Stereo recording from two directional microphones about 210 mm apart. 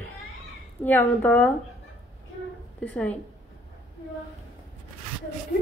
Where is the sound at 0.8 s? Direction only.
10° left (ahead or behind).